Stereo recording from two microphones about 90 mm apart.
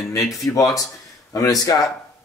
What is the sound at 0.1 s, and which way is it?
Speech, 40° left (ahead or behind).